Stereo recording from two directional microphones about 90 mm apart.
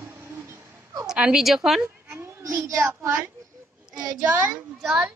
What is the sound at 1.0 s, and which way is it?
Speech, 10° right (ahead or behind).